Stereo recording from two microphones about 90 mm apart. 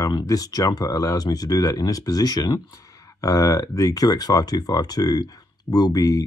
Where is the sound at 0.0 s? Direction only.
45° left (ahead or behind).